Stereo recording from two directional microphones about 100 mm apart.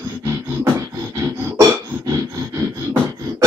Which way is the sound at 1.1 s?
30° right (ahead or behind).